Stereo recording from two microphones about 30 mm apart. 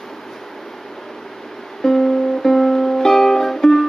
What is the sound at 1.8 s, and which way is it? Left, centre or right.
Music, centre.